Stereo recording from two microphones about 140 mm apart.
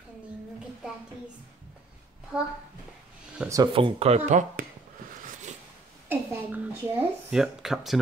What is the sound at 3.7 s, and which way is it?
Speech, 45° right (ahead or behind).